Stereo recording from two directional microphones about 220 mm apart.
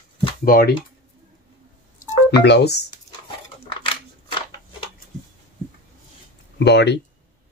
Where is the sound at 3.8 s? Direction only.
25° left (ahead or behind).